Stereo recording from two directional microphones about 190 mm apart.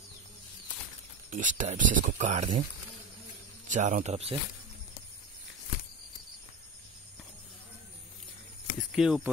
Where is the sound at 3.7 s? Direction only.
40° right (ahead or behind).